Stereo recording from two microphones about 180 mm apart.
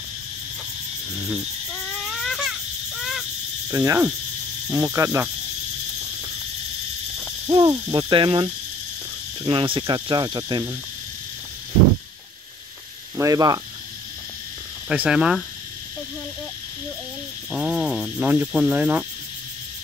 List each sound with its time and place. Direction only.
2.0 s baby cry: centre (ahead or behind)
3.0 s a sound: centre (ahead or behind)
3.7 s speech: 20° right (ahead or behind)
4.6 s cricket: 15° right (ahead or behind)
7.4 s speech: 20° right (ahead or behind)
13.1 s speech: 15° right (ahead or behind)
14.9 s speech: 5° right (ahead or behind)
17.5 s cricket: 5° right (ahead or behind)